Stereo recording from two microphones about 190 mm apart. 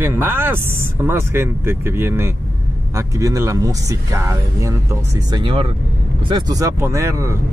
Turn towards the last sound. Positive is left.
turn(degrees=-15)  # may be behind; listen again after turning